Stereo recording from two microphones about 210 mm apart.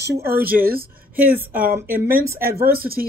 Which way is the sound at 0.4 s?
45° right (ahead or behind).